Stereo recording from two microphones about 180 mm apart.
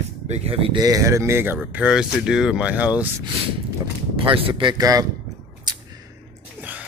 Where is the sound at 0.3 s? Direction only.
30° right (ahead or behind); by 3.1 s 5° right (ahead or behind).